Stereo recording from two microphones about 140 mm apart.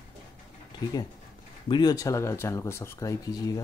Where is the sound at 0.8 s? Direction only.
30° left (ahead or behind).